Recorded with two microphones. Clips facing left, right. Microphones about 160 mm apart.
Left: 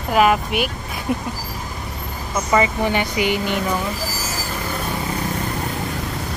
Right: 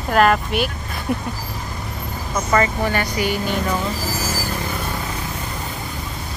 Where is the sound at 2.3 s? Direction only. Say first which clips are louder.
Left 1 dB; 10° left (ahead or behind).